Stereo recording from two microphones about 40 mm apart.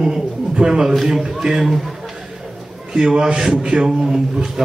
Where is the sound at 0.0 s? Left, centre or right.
Centre.